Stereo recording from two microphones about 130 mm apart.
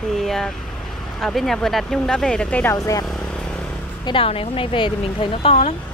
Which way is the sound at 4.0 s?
45° left (ahead or behind).